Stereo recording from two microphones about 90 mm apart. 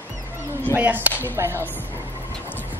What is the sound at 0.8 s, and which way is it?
Speech, 20° right (ahead or behind).